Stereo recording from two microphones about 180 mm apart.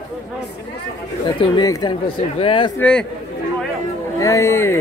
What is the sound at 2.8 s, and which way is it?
Speech, 5° left (ahead or behind).